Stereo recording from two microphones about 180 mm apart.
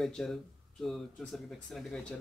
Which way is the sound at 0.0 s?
Centre (ahead or behind).